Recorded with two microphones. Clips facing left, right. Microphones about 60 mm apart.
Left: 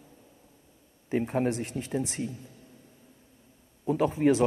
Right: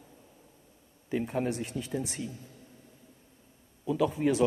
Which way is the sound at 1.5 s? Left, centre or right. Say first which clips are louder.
Left 2 dB; left.